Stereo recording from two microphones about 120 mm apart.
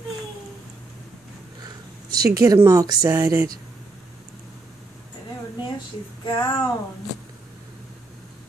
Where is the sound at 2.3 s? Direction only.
30° right (ahead or behind).